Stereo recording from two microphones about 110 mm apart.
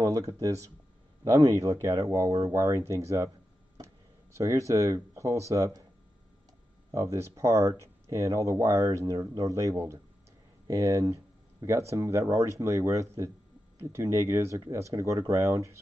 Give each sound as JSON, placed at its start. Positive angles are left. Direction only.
{"t": 0.0, "sound": "speech", "side_deg": -30}
{"t": 4.4, "sound": "speech", "side_deg": -25}
{"t": 6.9, "sound": "speech", "side_deg": -25}